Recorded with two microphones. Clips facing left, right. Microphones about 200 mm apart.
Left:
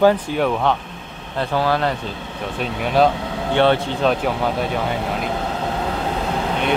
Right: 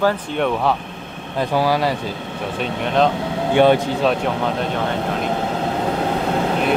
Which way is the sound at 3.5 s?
10° right (ahead or behind).